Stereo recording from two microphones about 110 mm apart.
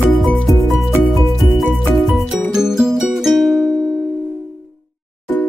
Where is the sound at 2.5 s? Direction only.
5° right (ahead or behind).